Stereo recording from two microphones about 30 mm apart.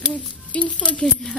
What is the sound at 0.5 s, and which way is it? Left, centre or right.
Speech, left.